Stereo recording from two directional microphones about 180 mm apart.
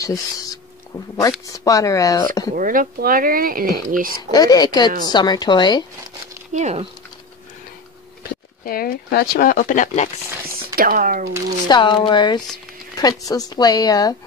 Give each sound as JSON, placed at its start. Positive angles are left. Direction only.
{"t": 0.0, "sound": "speech", "side_deg": 20}
{"t": 2.5, "sound": "speech", "side_deg": -50}
{"t": 4.3, "sound": "speech", "side_deg": 20}
{"t": 6.5, "sound": "speech", "side_deg": -40}
{"t": 8.6, "sound": "speech", "side_deg": 55}
{"t": 10.8, "sound": "speech", "side_deg": -50}
{"t": 11.6, "sound": "speech", "side_deg": 25}